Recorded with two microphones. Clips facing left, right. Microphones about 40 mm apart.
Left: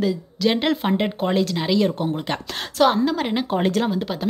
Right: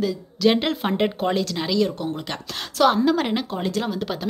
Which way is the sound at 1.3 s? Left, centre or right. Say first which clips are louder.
Left 3 dB; centre.